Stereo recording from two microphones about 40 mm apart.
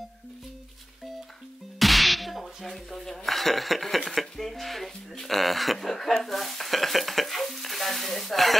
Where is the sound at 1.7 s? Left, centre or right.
Centre.